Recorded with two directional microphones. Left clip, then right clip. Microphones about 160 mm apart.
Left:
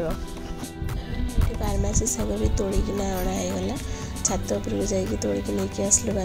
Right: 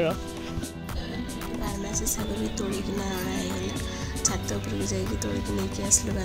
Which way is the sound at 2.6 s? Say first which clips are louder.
Left 6 dB; 20° left (ahead or behind).